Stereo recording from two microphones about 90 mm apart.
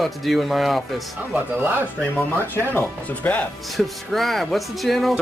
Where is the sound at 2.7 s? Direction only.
20° left (ahead or behind).